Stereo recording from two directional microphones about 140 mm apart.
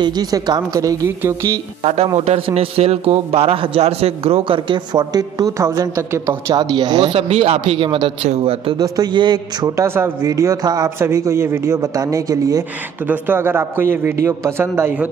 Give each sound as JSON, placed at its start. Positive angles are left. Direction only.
{"t": 0.0, "sound": "speech", "side_deg": -30}
{"t": 1.8, "sound": "a man's voice", "side_deg": -50}
{"t": 7.2, "sound": "speech", "side_deg": -45}
{"t": 8.7, "sound": "speech", "side_deg": -25}
{"t": 9.8, "sound": "speech", "side_deg": -15}
{"t": 13.0, "sound": "speech", "side_deg": -15}